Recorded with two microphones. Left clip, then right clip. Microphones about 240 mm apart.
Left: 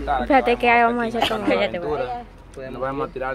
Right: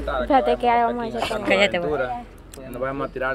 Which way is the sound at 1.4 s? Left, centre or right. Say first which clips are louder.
Right 2 dB; right.